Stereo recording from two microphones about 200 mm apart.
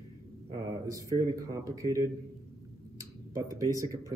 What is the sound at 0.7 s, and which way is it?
A man's voice, 15° right (ahead or behind).